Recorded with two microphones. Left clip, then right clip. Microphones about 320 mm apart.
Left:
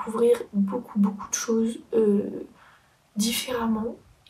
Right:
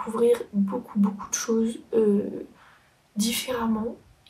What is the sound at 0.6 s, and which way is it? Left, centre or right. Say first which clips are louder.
Music: left 1 dB; right.